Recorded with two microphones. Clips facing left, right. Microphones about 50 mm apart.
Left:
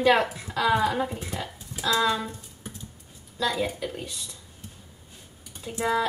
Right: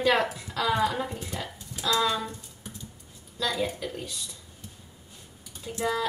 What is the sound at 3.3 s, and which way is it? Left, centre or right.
Speech, centre.